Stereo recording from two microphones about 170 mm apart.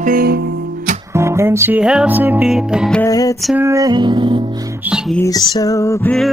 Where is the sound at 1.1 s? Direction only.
15° right (ahead or behind).